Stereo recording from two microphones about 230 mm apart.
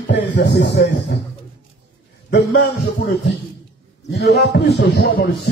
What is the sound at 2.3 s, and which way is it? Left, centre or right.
Speech, left.